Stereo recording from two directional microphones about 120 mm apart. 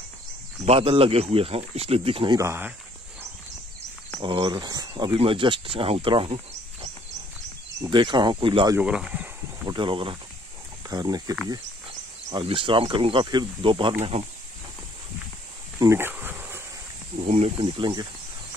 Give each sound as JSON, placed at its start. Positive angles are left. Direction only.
{"t": 0.7, "sound": "speech", "side_deg": -50}
{"t": 2.3, "sound": "speech", "side_deg": -20}
{"t": 4.2, "sound": "speech", "side_deg": -45}
{"t": 5.1, "sound": "speech", "side_deg": -50}
{"t": 7.8, "sound": "speech", "side_deg": -40}
{"t": 8.7, "sound": "a sound", "side_deg": -10}
{"t": 9.7, "sound": "speech", "side_deg": -40}
{"t": 10.9, "sound": "speech", "side_deg": -35}
{"t": 12.4, "sound": "speech", "side_deg": -45}
{"t": 15.8, "sound": "insect", "side_deg": -20}
{"t": 17.2, "sound": "speech", "side_deg": -60}